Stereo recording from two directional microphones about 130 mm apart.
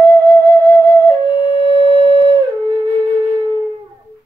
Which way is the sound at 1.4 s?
35° left (ahead or behind).